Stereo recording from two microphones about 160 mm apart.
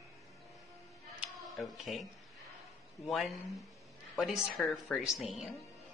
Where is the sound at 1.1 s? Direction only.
Centre (ahead or behind).